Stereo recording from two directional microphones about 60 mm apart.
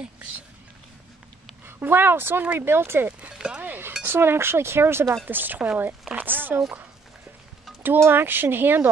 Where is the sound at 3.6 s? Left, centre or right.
Right.